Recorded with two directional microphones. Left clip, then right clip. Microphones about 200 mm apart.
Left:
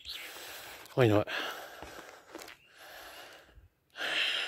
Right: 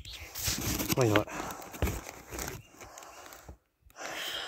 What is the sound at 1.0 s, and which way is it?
Speech, 20° left (ahead or behind).